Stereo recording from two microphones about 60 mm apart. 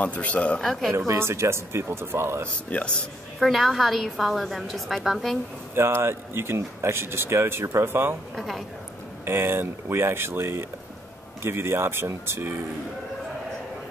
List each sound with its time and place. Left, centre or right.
0.0 s speech: left
0.6 s a woman's voice: centre
0.9 s speech: right
2.7 s speech: left
3.3 s a woman's voice: centre
5.8 s speech: right
7.6 s speech: right
7.9 s speech: right
8.4 s a woman's voice: centre
9.2 s speech: right